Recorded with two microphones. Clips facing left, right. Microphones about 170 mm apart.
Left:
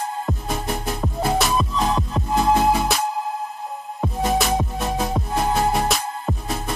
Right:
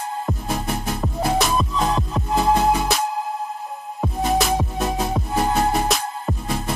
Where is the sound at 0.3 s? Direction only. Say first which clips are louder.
Right 2 dB; centre (ahead or behind).